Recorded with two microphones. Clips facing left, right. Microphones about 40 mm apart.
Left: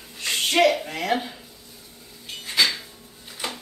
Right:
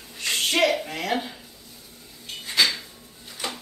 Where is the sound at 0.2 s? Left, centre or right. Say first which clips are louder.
Left 2 dB; centre.